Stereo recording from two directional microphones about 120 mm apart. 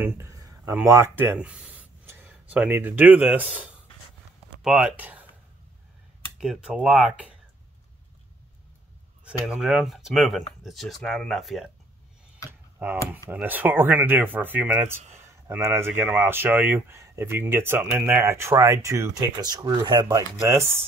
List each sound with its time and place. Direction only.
0.0 s a sound: 20° right (ahead or behind)
0.8 s speech: 20° right (ahead or behind)
6.4 s speech: 5° right (ahead or behind)
9.2 s speech: 5° right (ahead or behind)
12.4 s tick: 20° right (ahead or behind)
13.3 s speech: 15° right (ahead or behind)